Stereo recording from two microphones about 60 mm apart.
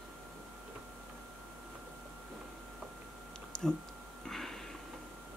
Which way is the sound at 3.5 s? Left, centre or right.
Centre.